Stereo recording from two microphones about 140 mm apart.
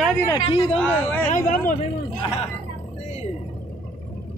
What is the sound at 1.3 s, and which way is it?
Speech, 65° left (ahead or behind).